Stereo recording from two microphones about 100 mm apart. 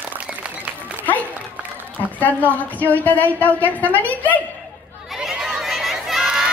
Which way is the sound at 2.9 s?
20° left (ahead or behind).